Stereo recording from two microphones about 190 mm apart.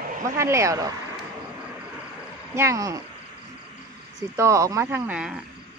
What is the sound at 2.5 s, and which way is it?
Speech, 15° right (ahead or behind).